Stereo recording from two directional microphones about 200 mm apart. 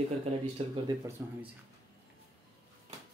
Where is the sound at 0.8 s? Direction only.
20° right (ahead or behind).